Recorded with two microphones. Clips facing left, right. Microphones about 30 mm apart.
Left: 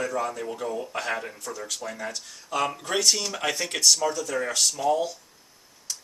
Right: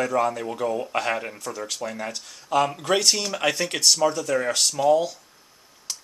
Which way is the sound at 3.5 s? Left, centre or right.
Right.